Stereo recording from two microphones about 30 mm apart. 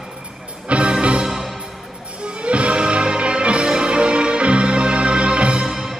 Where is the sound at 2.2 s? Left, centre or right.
Right.